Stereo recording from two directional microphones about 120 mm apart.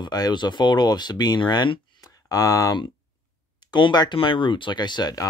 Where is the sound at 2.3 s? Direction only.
25° left (ahead or behind).